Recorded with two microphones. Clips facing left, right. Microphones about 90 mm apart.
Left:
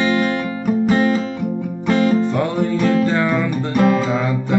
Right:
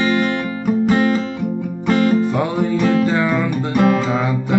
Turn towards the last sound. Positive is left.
turn(degrees=0)  # may be behind; listen again after turning